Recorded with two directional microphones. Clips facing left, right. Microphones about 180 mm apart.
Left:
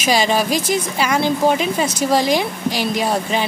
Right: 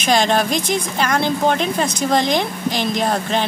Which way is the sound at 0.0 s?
5° left (ahead or behind).